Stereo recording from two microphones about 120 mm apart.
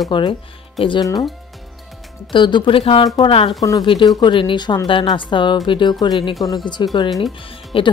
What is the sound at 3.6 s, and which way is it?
Speech, 30° left (ahead or behind).